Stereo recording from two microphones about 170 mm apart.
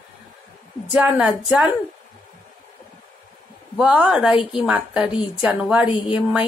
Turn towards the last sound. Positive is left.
turn(degrees=-10)  # may be behind; listen again after turning